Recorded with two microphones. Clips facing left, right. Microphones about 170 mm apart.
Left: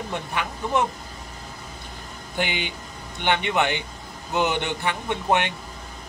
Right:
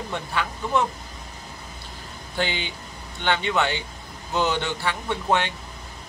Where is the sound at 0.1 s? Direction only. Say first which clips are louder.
Right 2 dB; 15° left (ahead or behind).